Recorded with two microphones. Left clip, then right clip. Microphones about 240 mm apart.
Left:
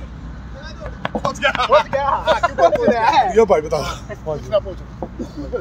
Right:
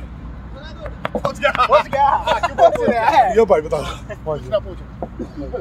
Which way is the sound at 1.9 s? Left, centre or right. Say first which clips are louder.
Right 2 dB; right.